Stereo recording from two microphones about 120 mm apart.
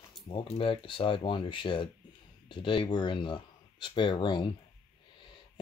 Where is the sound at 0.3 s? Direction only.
50° left (ahead or behind).